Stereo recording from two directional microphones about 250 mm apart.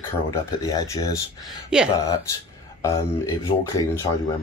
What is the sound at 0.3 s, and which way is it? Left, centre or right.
Speech, centre.